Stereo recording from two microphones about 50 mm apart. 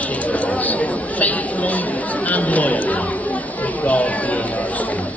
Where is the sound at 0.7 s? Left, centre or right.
Left.